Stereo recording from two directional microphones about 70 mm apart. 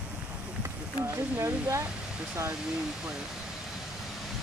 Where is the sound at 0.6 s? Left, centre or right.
Right.